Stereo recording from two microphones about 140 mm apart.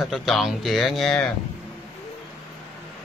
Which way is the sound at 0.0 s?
Centre (ahead or behind).